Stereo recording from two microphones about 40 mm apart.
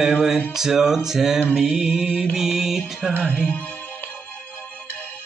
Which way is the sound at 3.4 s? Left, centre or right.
Left.